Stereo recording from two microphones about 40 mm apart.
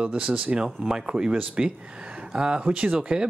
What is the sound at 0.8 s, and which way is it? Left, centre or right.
Speech, centre.